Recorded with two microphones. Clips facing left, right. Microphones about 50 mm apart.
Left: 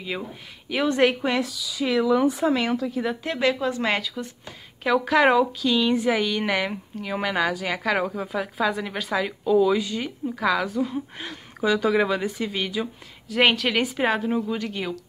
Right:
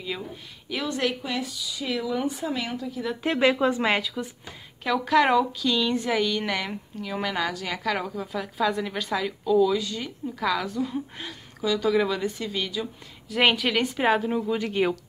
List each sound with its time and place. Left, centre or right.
0.7 s a woman's voice: left
1.4 s speech: left
3.3 s speech: right
3.8 s speech: centre
4.8 s a woman's voice: centre
11.2 s speech: centre
13.3 s a woman's voice: centre
14.6 s speech: centre